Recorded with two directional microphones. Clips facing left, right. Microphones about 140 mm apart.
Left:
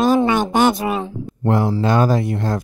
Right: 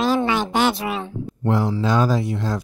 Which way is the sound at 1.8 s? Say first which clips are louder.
Left 3 dB; 55° left (ahead or behind).